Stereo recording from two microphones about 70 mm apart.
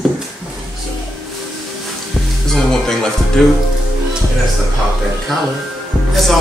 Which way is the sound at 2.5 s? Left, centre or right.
Centre.